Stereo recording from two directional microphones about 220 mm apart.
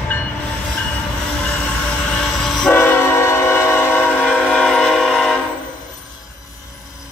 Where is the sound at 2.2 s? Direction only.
Centre (ahead or behind).